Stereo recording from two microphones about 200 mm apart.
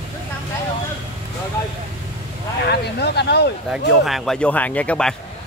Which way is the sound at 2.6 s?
55° left (ahead or behind).